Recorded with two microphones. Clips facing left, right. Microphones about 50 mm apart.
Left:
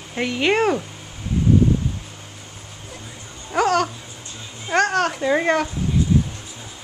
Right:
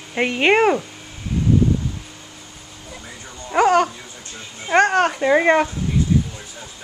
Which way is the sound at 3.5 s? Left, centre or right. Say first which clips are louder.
Right 3 dB; centre.